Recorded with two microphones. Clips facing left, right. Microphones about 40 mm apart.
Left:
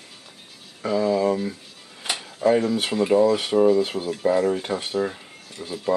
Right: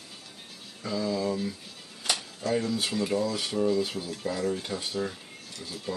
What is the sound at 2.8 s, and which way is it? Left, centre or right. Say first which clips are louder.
Speech: left 9 dB; left.